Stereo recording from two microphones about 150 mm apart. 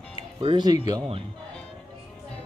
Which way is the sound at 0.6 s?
25° right (ahead or behind).